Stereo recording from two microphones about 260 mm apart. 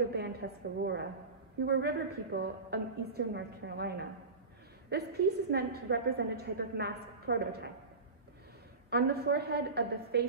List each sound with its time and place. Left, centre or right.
0.1 s a woman's voice: right
8.9 s a woman's voice: right